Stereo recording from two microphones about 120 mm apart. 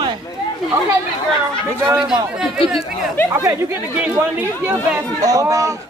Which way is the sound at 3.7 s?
15° right (ahead or behind).